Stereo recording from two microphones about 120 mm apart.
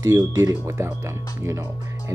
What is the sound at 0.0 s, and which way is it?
Speech, 25° right (ahead or behind).